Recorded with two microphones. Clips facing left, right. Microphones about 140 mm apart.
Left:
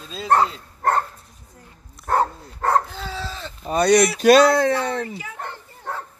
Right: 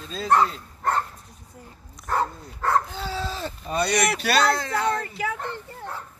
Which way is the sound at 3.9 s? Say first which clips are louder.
Left 8 dB; 55° right (ahead or behind).